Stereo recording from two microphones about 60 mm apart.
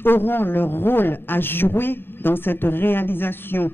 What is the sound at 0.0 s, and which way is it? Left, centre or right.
A man's voice, left.